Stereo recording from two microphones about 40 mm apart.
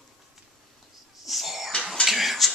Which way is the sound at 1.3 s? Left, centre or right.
Centre.